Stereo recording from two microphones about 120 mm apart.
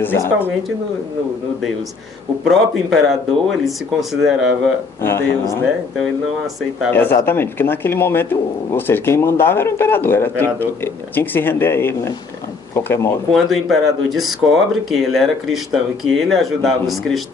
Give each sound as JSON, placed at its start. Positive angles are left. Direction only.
{"t": 0.0, "sound": "speech", "side_deg": 15}
{"t": 2.4, "sound": "speech", "side_deg": 0}
{"t": 5.0, "sound": "speech", "side_deg": 25}
{"t": 6.9, "sound": "speech", "side_deg": 15}
{"t": 13.3, "sound": "speech", "side_deg": 0}